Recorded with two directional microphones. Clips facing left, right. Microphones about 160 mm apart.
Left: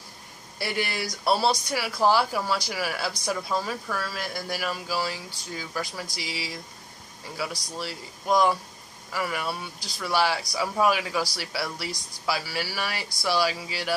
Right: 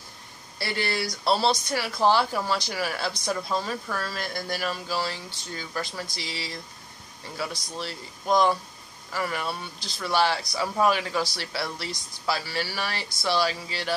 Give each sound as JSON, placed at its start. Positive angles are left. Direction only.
{"t": 0.6, "sound": "speech", "side_deg": 15}